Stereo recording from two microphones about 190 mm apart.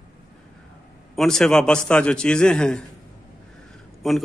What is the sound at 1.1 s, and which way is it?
A man's voice, centre (ahead or behind).